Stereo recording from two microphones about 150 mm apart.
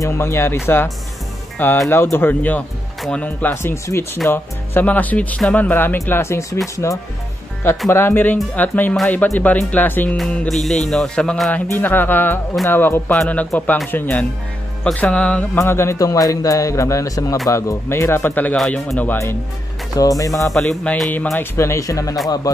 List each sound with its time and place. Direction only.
0.0 s speech: 20° left (ahead or behind)
1.9 s a man's voice: 15° left (ahead or behind)
10.1 s music: 5° left (ahead or behind)
11.8 s a man's voice: 15° left (ahead or behind)
20.4 s speech: centre (ahead or behind); by 22.1 s 20° left (ahead or behind)